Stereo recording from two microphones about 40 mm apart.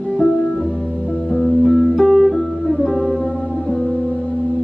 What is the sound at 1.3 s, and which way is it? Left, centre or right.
Music, left.